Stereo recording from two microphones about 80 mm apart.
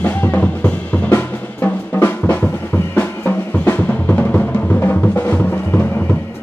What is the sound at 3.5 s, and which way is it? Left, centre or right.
Music, left.